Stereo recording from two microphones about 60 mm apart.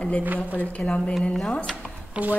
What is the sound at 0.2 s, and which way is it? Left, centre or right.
Speech, right.